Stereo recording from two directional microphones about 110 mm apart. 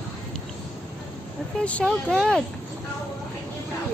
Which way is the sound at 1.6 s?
10° left (ahead or behind).